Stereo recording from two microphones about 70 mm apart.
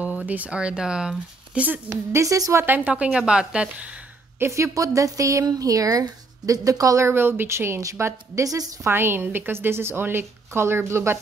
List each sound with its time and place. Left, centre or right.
0.3 s speech: centre
2.1 s a woman's voice: right
2.5 s speech: right
3.1 s speech: centre
4.4 s a woman's voice: right
7.8 s a woman's voice: right
8.8 s a woman's voice: right